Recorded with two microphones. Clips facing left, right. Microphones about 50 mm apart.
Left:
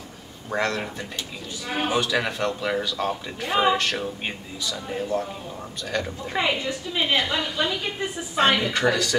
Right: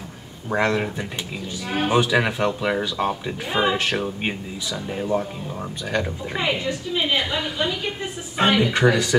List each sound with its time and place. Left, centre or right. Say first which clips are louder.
0.5 s speech: right 4 dB; centre
6.3 s a woman's voice: even; centre
8.7 s speech: right 3 dB; centre